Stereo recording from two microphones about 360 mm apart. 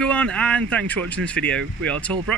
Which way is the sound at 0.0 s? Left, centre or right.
Centre.